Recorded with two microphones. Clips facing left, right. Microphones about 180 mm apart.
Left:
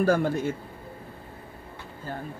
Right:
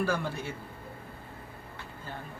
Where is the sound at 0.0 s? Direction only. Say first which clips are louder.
Left 8 dB; 45° left (ahead or behind).